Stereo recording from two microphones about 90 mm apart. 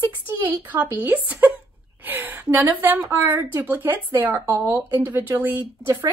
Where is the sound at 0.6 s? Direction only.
20° right (ahead or behind).